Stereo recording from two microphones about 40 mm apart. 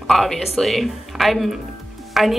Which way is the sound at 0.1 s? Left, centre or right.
Centre.